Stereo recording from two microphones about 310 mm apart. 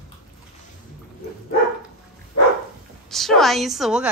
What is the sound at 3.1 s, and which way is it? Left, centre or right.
A woman's voice, centre.